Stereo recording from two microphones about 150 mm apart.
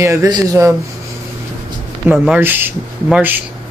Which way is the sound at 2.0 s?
5° right (ahead or behind).